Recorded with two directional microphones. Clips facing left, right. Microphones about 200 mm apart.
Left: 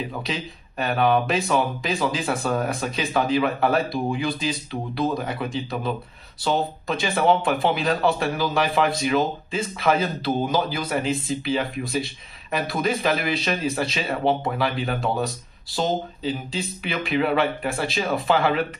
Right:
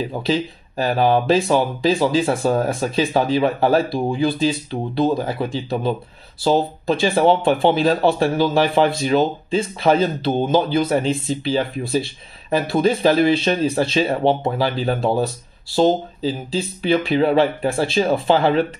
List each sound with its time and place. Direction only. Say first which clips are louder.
0.1 s speech: right 9 dB; 30° right (ahead or behind)